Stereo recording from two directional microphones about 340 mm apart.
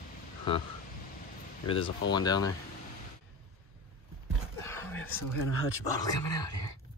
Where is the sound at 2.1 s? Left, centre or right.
Centre.